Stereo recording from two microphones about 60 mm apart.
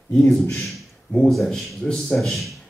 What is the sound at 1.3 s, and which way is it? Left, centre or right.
A man's voice, centre.